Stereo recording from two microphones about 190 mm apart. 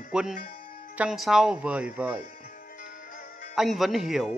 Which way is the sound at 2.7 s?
45° left (ahead or behind).